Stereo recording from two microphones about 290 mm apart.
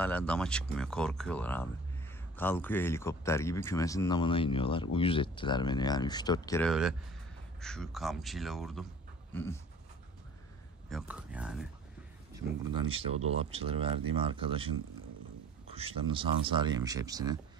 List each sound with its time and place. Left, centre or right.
0.0 s speech: centre
6.7 s speech: centre
9.3 s pant: centre
10.9 s speech: centre
12.6 s speech: centre
15.7 s speech: centre